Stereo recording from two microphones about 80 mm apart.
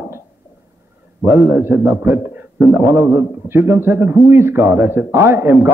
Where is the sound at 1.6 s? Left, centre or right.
Right.